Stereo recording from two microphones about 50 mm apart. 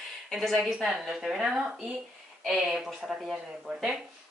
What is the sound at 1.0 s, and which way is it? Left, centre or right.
Speech, centre.